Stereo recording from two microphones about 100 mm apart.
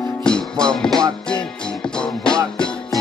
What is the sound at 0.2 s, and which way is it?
Music, 10° left (ahead or behind).